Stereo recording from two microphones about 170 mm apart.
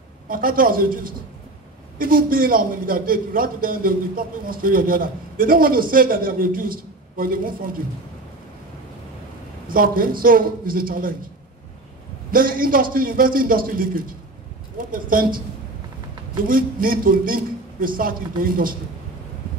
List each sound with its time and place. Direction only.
0.3 s a man's voice: 55° right (ahead or behind)
9.7 s a man's voice: 55° right (ahead or behind)
12.3 s a man's voice: 55° right (ahead or behind)
16.4 s a man's voice: 55° right (ahead or behind)